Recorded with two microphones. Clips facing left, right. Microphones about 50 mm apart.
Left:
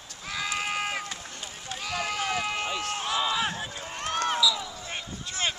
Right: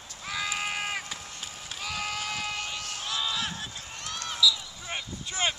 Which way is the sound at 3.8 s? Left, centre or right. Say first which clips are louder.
Left 9 dB; left.